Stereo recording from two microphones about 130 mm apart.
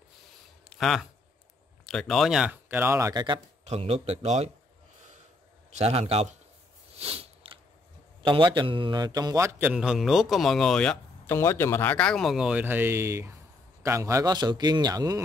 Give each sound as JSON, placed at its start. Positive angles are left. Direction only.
{"t": 0.7, "sound": "speech", "side_deg": 0}
{"t": 2.5, "sound": "speech", "side_deg": -15}
{"t": 3.1, "sound": "a man's voice", "side_deg": -30}
{"t": 3.6, "sound": "speech", "side_deg": -55}
{"t": 5.7, "sound": "a man's voice", "side_deg": -55}
{"t": 7.0, "sound": "biting", "side_deg": -50}
{"t": 8.2, "sound": "a man's voice", "side_deg": -40}
{"t": 9.7, "sound": "speech", "side_deg": -5}
{"t": 11.2, "sound": "a man's voice", "side_deg": 20}